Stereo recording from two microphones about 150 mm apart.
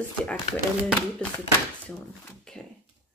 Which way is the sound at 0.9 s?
10° left (ahead or behind).